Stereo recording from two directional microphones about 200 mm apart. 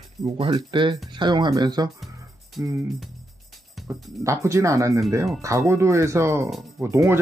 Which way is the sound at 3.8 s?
Centre (ahead or behind).